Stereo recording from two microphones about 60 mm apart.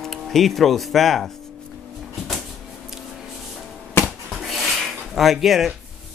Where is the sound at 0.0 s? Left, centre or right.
Centre.